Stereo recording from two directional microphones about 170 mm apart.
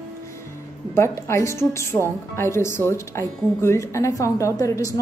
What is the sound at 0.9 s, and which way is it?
A woman's voice, 15° left (ahead or behind).